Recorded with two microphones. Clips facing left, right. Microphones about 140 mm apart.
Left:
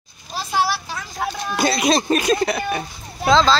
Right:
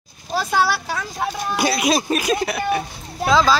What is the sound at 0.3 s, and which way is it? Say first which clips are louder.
Vehicle: right 2 dB; 55° right (ahead or behind).